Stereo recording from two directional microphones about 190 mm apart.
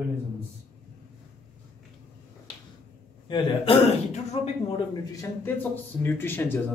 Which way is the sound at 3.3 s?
30° left (ahead or behind).